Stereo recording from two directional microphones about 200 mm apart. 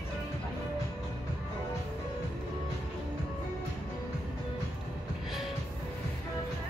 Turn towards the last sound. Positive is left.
turn(degrees=0)  # may be behind; listen again after turning